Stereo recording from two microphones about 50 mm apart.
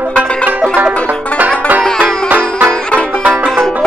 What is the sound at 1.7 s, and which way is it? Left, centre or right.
Music, right.